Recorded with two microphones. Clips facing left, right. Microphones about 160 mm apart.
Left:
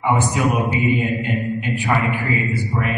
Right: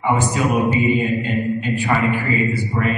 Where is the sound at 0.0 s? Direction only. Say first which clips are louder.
Even; 15° left (ahead or behind).